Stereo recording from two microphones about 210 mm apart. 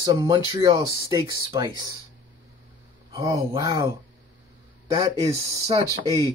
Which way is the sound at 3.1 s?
15° right (ahead or behind).